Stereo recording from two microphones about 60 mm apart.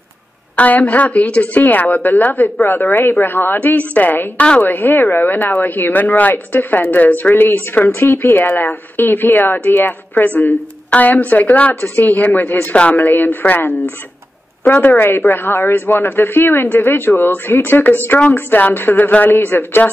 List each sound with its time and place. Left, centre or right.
0.6 s a woman's voice: left
12.7 s a woman's voice: left
13.0 s speech: left